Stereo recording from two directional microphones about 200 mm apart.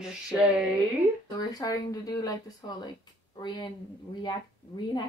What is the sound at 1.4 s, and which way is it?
Speech, 20° left (ahead or behind).